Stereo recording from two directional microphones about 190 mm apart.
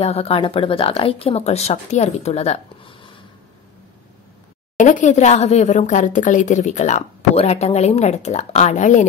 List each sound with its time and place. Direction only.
0.0 s speech: 30° left (ahead or behind)
4.7 s speech: 40° left (ahead or behind)